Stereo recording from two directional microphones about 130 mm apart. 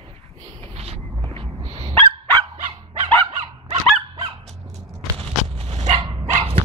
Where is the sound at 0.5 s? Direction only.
50° right (ahead or behind).